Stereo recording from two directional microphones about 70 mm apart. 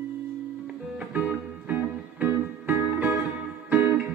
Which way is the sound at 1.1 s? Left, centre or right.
Right.